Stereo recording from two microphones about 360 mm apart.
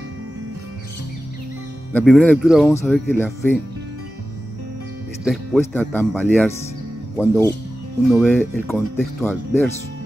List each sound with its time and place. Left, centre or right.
1.9 s speech: centre
5.2 s speech: centre